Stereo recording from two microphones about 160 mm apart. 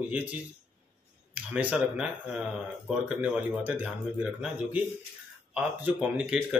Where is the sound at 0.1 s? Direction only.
10° right (ahead or behind).